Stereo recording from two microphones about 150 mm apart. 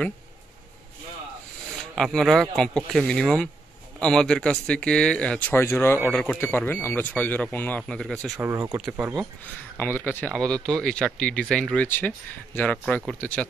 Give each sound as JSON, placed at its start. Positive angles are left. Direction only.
{"t": 2.0, "sound": "speech", "side_deg": 0}
{"t": 8.4, "sound": "speech", "side_deg": -20}
{"t": 8.7, "sound": "speech", "side_deg": -5}
{"t": 9.8, "sound": "speech", "side_deg": 15}